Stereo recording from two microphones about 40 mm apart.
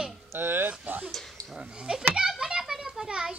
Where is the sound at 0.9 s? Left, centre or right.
Right.